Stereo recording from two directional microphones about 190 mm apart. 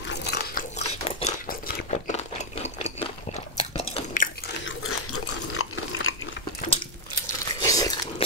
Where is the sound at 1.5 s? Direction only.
40° left (ahead or behind).